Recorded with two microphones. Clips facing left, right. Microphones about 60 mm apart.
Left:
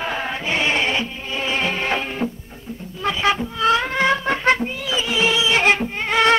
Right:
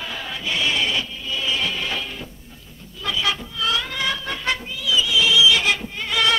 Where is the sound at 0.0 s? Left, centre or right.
Left.